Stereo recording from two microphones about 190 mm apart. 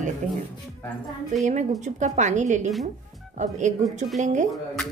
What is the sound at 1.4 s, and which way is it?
A woman's voice, 40° right (ahead or behind).